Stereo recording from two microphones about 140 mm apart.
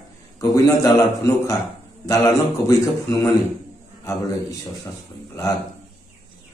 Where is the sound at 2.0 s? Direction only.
20° left (ahead or behind).